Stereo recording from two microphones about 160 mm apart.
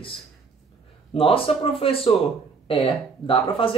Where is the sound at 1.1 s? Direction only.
35° left (ahead or behind).